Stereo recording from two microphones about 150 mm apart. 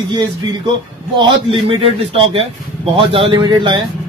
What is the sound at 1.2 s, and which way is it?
Speech, 35° right (ahead or behind).